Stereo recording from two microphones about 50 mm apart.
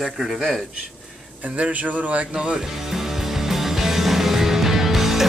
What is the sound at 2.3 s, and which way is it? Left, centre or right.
Speech, centre.